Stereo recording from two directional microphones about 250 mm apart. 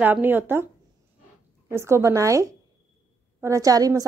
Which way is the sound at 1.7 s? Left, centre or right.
Centre.